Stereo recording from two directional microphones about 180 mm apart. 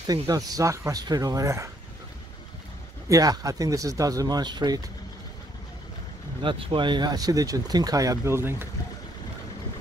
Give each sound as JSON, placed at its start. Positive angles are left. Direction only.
{"t": 0.0, "sound": "speech", "side_deg": -20}
{"t": 3.1, "sound": "speech", "side_deg": -20}
{"t": 6.4, "sound": "speech", "side_deg": -30}